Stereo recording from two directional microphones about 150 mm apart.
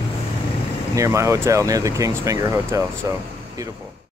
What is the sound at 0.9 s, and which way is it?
Speech, 20° right (ahead or behind).